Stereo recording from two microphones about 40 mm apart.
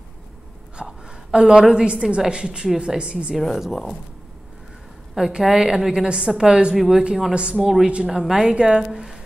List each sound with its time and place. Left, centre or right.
0.7 s a woman's voice: right
3.3 s speech: centre
5.1 s a woman's voice: centre
6.7 s a woman's voice: centre
7.8 s a woman's voice: right